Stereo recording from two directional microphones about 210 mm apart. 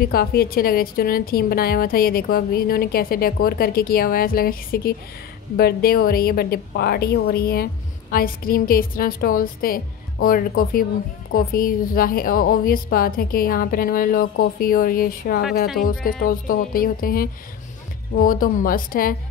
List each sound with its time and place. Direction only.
0.0 s a woman's voice: 45° left (ahead or behind)